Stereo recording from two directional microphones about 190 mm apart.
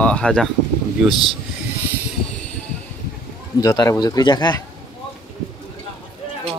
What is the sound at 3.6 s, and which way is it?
A man's voice, 20° left (ahead or behind).